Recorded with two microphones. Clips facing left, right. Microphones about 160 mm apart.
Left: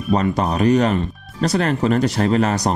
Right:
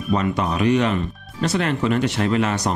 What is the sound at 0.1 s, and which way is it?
Speech, 40° left (ahead or behind).